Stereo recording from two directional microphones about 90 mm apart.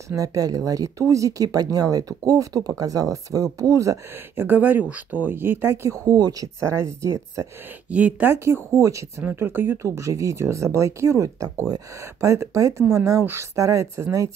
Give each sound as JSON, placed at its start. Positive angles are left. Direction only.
{"t": 0.1, "sound": "speech", "side_deg": -40}
{"t": 4.5, "sound": "speech", "side_deg": -20}
{"t": 6.0, "sound": "speech", "side_deg": -45}
{"t": 6.6, "sound": "speech", "side_deg": -30}
{"t": 7.9, "sound": "speech", "side_deg": -15}
{"t": 8.3, "sound": "speech", "side_deg": -25}